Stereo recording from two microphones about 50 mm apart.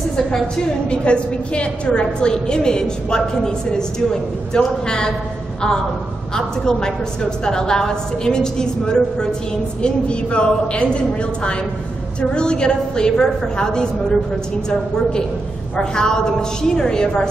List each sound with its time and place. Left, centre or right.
0.8 s a woman's voice: left
6.3 s a woman's voice: centre
15.7 s a woman's voice: centre